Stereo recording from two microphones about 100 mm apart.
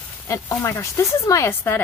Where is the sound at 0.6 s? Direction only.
30° left (ahead or behind).